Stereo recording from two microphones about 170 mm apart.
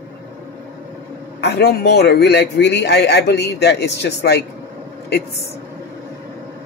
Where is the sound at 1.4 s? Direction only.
70° left (ahead or behind).